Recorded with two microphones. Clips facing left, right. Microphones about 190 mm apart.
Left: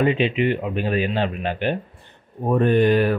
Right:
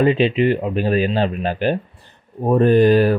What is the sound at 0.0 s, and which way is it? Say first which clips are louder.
Speech: right 4 dB; 35° right (ahead or behind).